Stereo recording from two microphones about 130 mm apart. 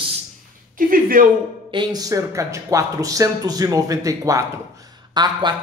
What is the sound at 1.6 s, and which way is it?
Speech, 35° right (ahead or behind).